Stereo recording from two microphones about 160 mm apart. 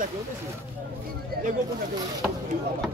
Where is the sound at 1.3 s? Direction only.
70° right (ahead or behind).